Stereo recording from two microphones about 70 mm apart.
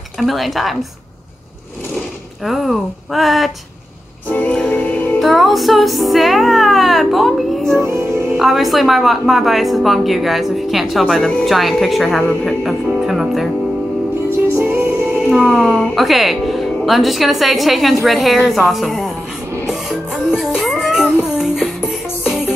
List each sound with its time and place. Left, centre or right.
0.2 s a woman's voice: centre
2.4 s a woman's voice: centre
4.5 s music: centre
5.2 s music: centre
7.8 s music: right
8.4 s a woman's voice: centre
14.6 s a woman's voice: centre
19.7 s music: centre